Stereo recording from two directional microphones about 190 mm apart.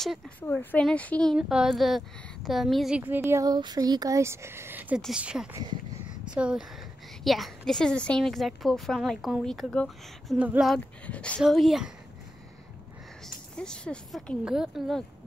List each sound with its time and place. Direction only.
0.0 s a woman's voice: 5° left (ahead or behind)
5.5 s speech: 20° right (ahead or behind)
6.3 s a woman's voice: 5° right (ahead or behind)
13.2 s a woman's voice: 5° left (ahead or behind)